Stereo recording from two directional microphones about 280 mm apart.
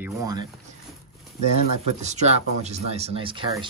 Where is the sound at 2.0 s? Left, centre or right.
Right.